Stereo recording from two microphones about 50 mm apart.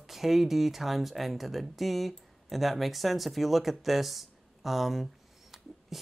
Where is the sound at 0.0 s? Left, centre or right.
Centre.